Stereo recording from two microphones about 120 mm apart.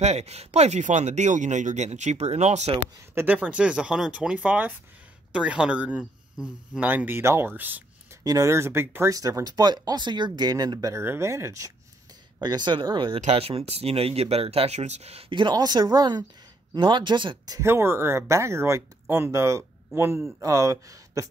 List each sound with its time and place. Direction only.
0.0 s speech: 65° right (ahead or behind)
3.2 s speech: 15° right (ahead or behind)
8.2 s speech: 25° right (ahead or behind)
12.4 s speech: 35° right (ahead or behind)
13.2 s speech: 60° right (ahead or behind); by 17.6 s 40° right (ahead or behind)
17.6 s speech: 20° right (ahead or behind)